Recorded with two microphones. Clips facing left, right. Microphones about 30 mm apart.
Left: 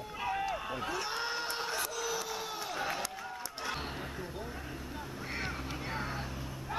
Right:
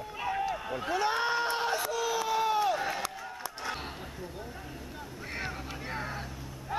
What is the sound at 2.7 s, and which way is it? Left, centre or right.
Run, centre.